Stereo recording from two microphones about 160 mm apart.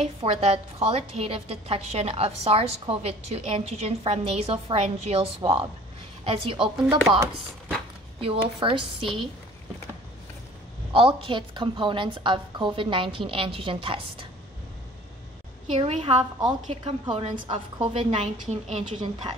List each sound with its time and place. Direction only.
0.0 s a woman's voice: 35° right (ahead or behind)
7.1 s chopping: 20° right (ahead or behind)
8.2 s a woman's voice: 35° right (ahead or behind)
10.9 s a woman's voice: 35° right (ahead or behind)
15.7 s a woman's voice: 35° right (ahead or behind)